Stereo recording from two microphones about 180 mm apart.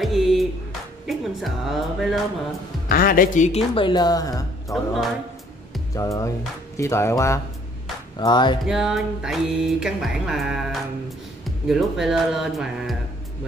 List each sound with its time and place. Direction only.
0.0 s music: centre (ahead or behind)
2.9 s a woman's voice: 50° left (ahead or behind); by 4.7 s 20° left (ahead or behind)
5.9 s a woman's voice: 20° left (ahead or behind)
8.6 s music: centre (ahead or behind)